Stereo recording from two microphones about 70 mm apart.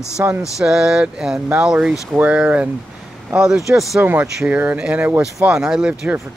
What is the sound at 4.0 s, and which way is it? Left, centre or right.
Speech, right.